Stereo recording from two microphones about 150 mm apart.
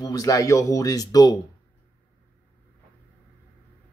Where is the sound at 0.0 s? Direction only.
25° left (ahead or behind).